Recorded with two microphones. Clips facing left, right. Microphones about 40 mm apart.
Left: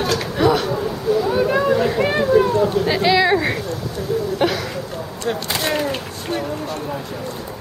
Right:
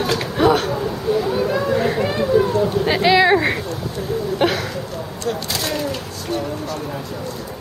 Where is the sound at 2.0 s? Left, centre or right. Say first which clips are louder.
Left 2 dB; left.